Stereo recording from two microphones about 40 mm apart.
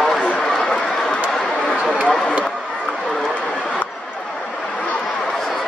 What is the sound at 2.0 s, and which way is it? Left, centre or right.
Run, left.